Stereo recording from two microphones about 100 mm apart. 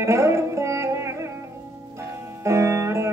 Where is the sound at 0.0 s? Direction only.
30° right (ahead or behind).